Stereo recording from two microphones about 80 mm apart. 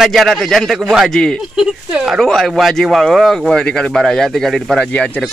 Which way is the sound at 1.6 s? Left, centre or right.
Centre.